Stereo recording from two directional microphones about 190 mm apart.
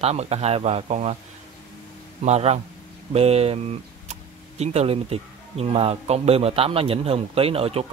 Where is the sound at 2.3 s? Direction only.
35° right (ahead or behind).